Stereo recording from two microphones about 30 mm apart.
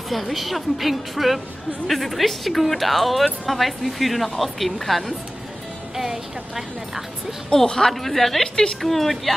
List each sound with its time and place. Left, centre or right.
0.1 s speech: centre
5.9 s speech: centre
7.5 s a woman's voice: left
7.9 s a woman's voice: centre